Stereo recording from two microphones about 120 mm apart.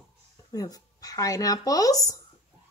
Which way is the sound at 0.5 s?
30° left (ahead or behind).